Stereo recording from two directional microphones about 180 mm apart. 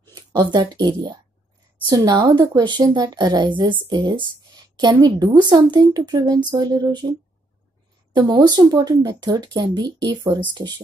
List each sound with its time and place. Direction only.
0.0 s speech: 20° right (ahead or behind)
8.1 s speech: 25° right (ahead or behind)